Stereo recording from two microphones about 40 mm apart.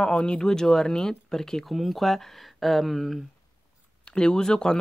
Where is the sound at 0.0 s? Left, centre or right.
Left.